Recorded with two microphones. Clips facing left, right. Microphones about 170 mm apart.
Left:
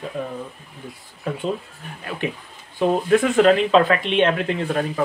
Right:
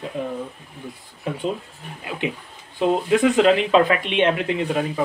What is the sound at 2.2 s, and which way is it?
Speech, 20° right (ahead or behind).